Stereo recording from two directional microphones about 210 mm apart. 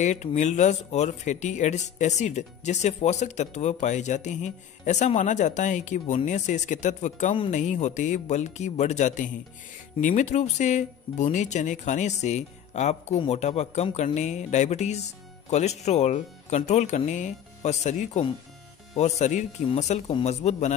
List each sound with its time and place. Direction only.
0.0 s speech: 35° left (ahead or behind)